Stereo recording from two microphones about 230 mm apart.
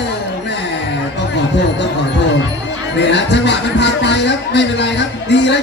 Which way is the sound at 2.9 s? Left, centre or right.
Left.